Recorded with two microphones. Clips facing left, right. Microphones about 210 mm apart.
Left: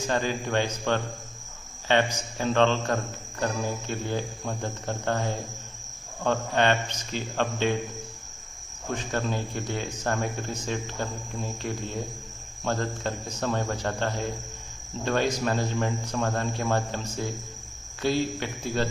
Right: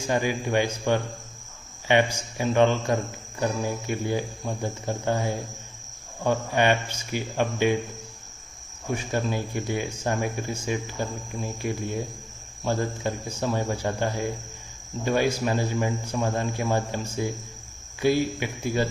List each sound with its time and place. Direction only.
0.0 s a man's voice: 10° right (ahead or behind)
8.9 s a man's voice: 10° right (ahead or behind)